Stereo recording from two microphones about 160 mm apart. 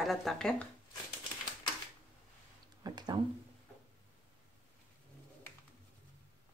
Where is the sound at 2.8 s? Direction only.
25° right (ahead or behind).